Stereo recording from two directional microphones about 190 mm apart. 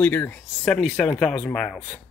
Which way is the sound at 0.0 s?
10° left (ahead or behind).